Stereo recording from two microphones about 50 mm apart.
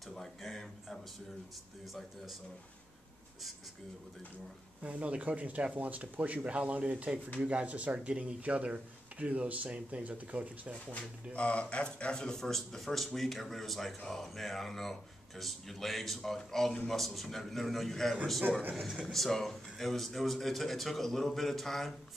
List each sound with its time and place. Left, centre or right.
0.0 s a sound: centre
1.9 s speech: centre
4.8 s speech: right
11.3 s speech: left; by 21.9 s centre